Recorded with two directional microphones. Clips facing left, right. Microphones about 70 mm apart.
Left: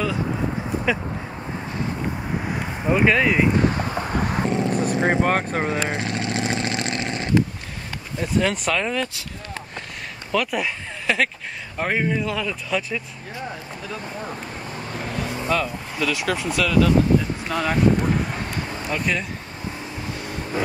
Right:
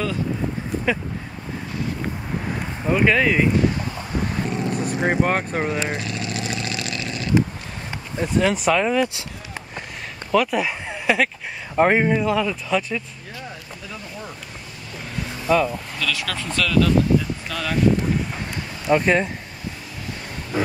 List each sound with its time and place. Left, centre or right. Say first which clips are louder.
2.5 s speech: even; centre
4.3 s vehicle: left 3 dB; left
5.2 s speech: even; centre
5.7 s vehicle: left 1 dB; left
8.2 s speech: right 2 dB; centre
11.7 s speech: right 6 dB; right
12.2 s speech: right 4 dB; centre
15.4 s speech: right 5 dB; centre
16.0 s speech: left 4 dB; left
16.4 s speech: even; centre
17.5 s speech: left 7 dB; left
18.9 s speech: right 8 dB; right